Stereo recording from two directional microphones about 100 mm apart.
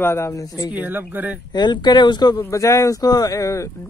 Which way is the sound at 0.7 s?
20° right (ahead or behind).